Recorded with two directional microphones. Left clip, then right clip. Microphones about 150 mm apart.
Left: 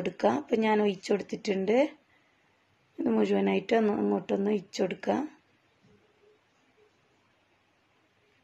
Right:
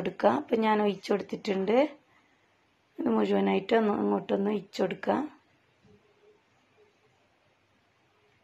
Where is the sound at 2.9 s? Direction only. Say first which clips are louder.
Even; 15° left (ahead or behind).